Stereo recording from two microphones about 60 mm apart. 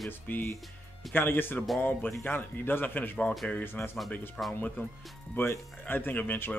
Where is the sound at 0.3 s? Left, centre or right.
Left.